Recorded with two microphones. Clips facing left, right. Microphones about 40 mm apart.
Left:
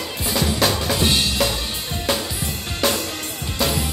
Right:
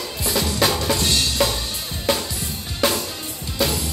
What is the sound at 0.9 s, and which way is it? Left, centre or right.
Drum, centre.